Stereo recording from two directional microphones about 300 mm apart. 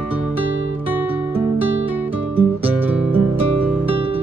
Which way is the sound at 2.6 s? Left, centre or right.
Centre.